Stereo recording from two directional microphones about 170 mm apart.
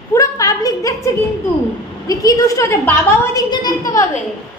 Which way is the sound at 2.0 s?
20° left (ahead or behind).